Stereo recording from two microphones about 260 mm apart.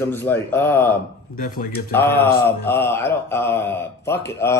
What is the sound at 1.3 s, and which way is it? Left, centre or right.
Speech, left.